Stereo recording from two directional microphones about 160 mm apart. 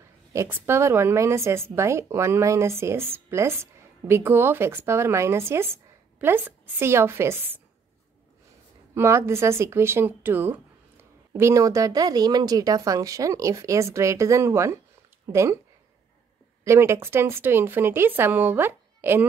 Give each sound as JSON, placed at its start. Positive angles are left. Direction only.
{"t": 0.3, "sound": "speech", "side_deg": -15}
{"t": 8.9, "sound": "speech", "side_deg": -15}
{"t": 16.6, "sound": "speech", "side_deg": -15}